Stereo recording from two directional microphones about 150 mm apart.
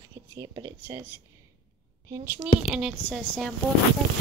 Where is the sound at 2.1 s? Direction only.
20° right (ahead or behind).